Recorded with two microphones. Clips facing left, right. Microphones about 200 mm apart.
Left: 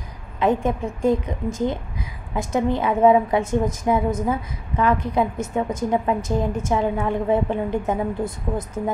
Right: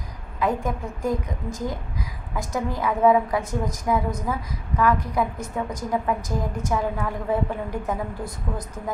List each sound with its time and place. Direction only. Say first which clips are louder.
0.4 s a woman's voice: left 5 dB; 25° left (ahead or behind)